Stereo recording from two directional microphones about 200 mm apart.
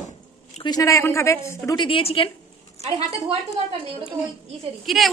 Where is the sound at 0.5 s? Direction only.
20° left (ahead or behind).